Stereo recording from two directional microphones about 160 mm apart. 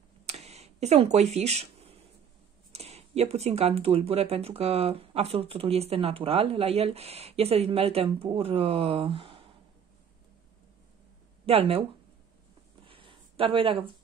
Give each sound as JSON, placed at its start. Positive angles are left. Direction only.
{"t": 0.3, "sound": "camera", "side_deg": -40}
{"t": 2.7, "sound": "speech", "side_deg": -40}
{"t": 11.4, "sound": "speech", "side_deg": -35}
{"t": 12.8, "sound": "a sound", "side_deg": -35}